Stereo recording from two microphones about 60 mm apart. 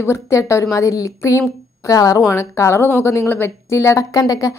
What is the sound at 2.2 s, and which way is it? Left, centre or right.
Speech, left.